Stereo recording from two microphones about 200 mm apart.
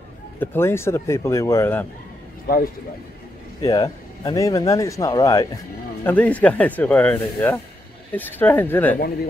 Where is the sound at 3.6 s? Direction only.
20° left (ahead or behind).